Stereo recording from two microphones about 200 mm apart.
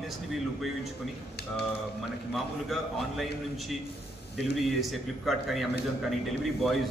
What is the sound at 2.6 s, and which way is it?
A man's voice, centre (ahead or behind).